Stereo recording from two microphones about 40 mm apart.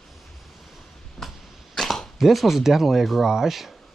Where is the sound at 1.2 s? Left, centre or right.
Centre.